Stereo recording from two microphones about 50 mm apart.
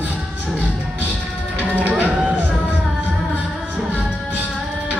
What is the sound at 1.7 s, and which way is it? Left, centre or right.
Music, right.